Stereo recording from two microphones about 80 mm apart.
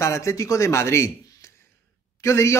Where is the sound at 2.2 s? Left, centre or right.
Left.